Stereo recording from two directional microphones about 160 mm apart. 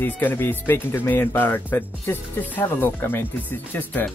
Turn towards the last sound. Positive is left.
turn(degrees=10)  # may be behind; listen again after turning